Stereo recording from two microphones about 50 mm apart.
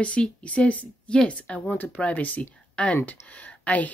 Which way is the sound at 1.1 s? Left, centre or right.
Centre.